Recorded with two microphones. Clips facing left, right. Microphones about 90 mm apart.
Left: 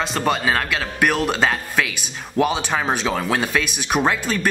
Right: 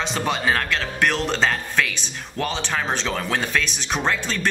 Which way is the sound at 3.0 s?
10° left (ahead or behind).